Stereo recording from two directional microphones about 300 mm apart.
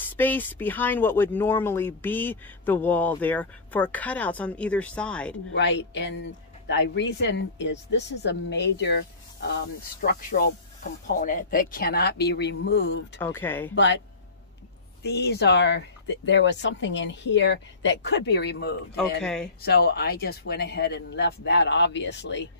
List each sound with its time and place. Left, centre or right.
0.1 s speech: centre
5.5 s speech: left
13.2 s speech: centre
15.0 s speech: left
19.2 s speech: centre
19.6 s speech: left